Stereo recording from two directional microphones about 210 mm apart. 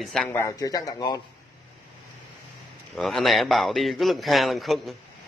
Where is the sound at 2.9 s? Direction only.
Centre (ahead or behind).